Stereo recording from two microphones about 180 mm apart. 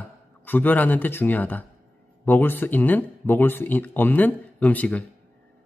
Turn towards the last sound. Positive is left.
turn(degrees=10)  # may be behind; listen again after turning